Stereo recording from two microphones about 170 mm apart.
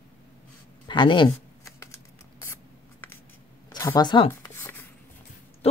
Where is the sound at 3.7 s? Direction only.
20° left (ahead or behind).